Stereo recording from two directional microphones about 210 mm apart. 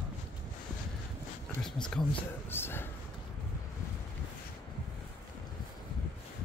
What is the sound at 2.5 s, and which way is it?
Speech, 10° left (ahead or behind).